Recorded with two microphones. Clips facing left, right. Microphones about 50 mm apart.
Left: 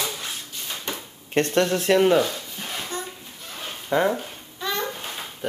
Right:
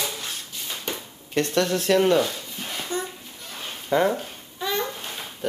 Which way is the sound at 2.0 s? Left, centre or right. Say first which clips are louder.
Left 1 dB; centre.